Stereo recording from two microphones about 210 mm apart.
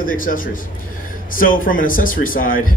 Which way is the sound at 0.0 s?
40° left (ahead or behind).